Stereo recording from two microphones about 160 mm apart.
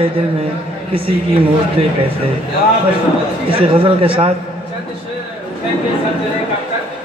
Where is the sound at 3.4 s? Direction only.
35° right (ahead or behind).